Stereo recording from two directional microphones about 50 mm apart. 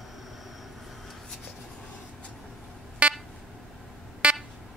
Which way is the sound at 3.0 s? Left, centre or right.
Right.